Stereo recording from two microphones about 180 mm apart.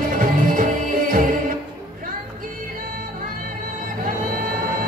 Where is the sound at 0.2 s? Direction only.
50° right (ahead or behind).